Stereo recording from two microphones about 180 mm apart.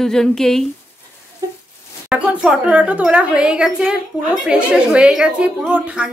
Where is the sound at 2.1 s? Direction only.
5° right (ahead or behind).